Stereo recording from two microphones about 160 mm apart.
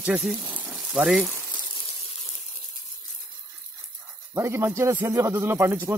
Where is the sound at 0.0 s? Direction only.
10° right (ahead or behind).